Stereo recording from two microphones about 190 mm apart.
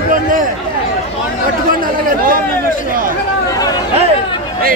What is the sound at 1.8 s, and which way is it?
Speech, 50° right (ahead or behind).